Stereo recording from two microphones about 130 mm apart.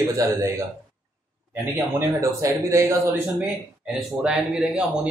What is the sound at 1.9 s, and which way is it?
Speech, 20° right (ahead or behind).